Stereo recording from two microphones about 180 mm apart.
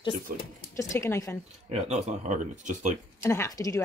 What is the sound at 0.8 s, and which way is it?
Speech, 15° left (ahead or behind).